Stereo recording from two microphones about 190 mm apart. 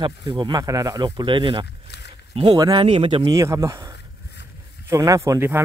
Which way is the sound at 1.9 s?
60° left (ahead or behind).